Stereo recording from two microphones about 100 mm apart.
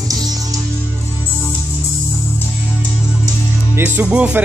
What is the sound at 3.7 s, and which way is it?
Music, 20° right (ahead or behind).